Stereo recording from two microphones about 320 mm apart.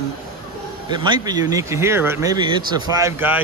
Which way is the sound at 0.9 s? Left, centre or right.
Centre.